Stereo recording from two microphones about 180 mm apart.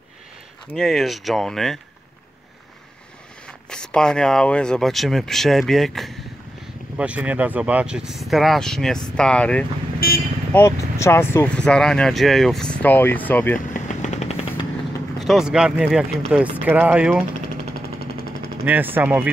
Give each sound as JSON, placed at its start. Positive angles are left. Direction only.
{"t": 0.7, "sound": "speech", "side_deg": 0}
{"t": 3.4, "sound": "speech", "side_deg": 5}
{"t": 9.9, "sound": "speech", "side_deg": 55}
{"t": 10.5, "sound": "speech", "side_deg": 15}
{"t": 13.6, "sound": "machine gun", "side_deg": 45}
{"t": 15.1, "sound": "speech", "side_deg": 0}
{"t": 17.9, "sound": "a sound", "side_deg": 55}
{"t": 18.7, "sound": "speech", "side_deg": -10}